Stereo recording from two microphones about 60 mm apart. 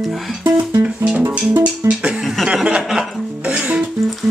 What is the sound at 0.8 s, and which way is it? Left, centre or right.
Music, centre.